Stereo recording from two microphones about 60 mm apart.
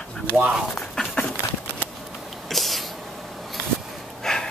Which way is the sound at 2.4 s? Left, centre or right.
Centre.